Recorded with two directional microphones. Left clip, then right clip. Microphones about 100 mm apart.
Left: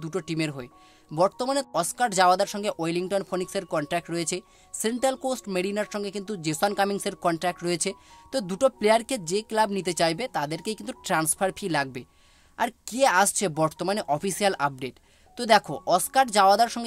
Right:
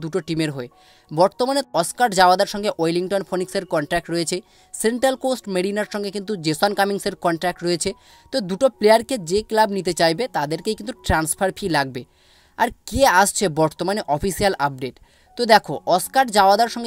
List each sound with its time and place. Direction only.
0.0 s speech: 45° right (ahead or behind)